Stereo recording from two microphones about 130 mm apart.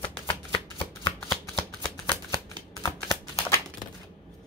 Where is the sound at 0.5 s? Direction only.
30° left (ahead or behind).